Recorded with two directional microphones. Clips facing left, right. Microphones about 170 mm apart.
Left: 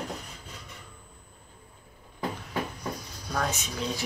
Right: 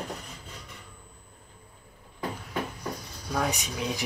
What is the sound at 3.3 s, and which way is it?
Speech, 15° right (ahead or behind).